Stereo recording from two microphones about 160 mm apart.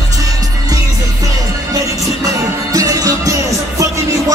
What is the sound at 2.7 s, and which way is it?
Music, 20° right (ahead or behind).